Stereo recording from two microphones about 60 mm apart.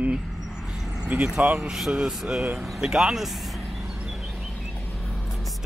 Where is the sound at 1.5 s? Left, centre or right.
Centre.